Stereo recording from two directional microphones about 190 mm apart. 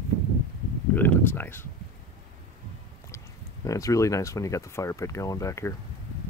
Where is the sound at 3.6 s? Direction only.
15° left (ahead or behind).